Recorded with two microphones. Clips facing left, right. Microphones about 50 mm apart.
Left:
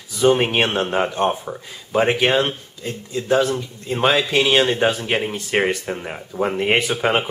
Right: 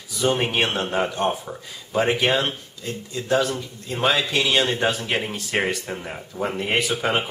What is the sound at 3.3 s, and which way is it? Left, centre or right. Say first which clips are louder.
Speech: left 2 dB; centre.